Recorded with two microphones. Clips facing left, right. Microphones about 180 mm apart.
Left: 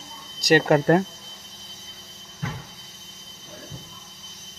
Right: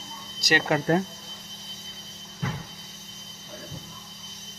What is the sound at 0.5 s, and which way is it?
Speech, 50° left (ahead or behind).